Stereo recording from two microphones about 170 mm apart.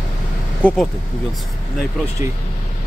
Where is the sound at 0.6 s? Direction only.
5° left (ahead or behind).